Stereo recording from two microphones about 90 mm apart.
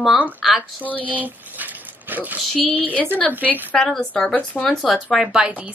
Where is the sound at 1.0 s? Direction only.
20° right (ahead or behind).